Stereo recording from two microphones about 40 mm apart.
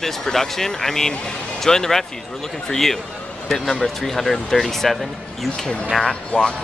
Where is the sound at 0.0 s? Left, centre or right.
Centre.